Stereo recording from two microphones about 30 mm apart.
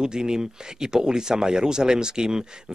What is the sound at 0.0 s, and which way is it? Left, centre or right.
Speech, right.